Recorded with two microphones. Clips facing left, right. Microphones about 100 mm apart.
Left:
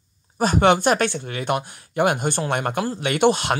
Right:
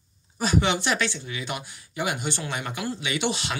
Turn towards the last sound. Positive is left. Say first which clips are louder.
# left 9 dB
turn(degrees=50)  # may be behind; listen again after turning